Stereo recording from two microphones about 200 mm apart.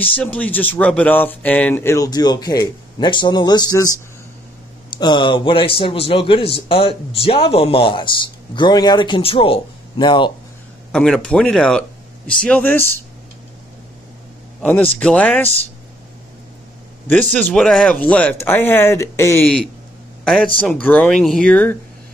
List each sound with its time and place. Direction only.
0.0 s a man's voice: 10° left (ahead or behind); by 10.3 s 25° left (ahead or behind)
10.9 s speech: 5° left (ahead or behind)
14.6 s speech: 5° left (ahead or behind)
17.3 s speech: 10° left (ahead or behind)